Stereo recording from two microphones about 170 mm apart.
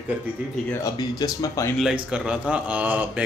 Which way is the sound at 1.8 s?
5° right (ahead or behind).